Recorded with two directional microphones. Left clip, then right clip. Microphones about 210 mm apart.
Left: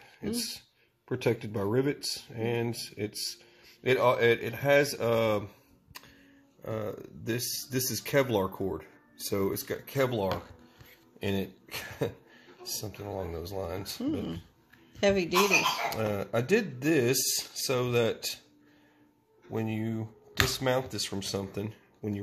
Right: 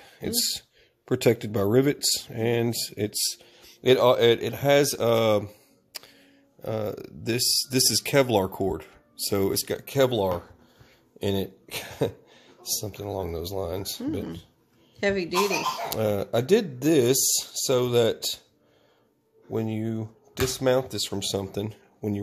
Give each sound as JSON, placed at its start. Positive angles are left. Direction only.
{"t": 0.2, "sound": "speech", "side_deg": -55}
{"t": 6.6, "sound": "speech", "side_deg": -55}
{"t": 15.0, "sound": "speech", "side_deg": 15}
{"t": 15.9, "sound": "speech", "side_deg": -55}
{"t": 19.5, "sound": "speech", "side_deg": -50}